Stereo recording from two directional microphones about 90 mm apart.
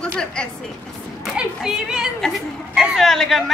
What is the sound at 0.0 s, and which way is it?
Speech, 10° left (ahead or behind).